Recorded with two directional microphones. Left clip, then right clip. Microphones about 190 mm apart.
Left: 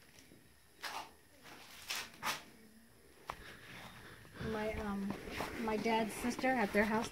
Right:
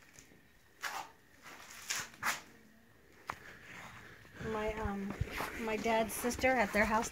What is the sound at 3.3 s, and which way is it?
Sniff, 5° left (ahead or behind).